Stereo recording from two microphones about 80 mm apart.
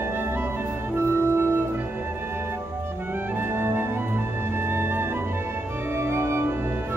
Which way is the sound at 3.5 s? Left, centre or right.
Right.